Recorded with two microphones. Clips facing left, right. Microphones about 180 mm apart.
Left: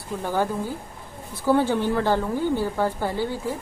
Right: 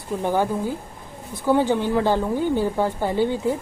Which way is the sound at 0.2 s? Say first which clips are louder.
Right 3 dB; 15° right (ahead or behind).